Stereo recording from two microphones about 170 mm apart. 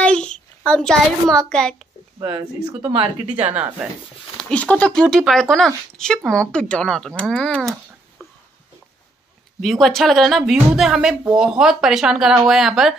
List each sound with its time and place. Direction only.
0.0 s a child's voice: 5° left (ahead or behind)
2.1 s speech: 25° right (ahead or behind)
4.4 s a woman's voice: 5° left (ahead or behind)
9.6 s a woman's voice: centre (ahead or behind)